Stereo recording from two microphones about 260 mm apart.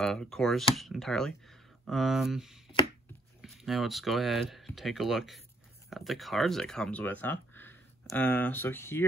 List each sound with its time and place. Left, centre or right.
0.0 s speech: centre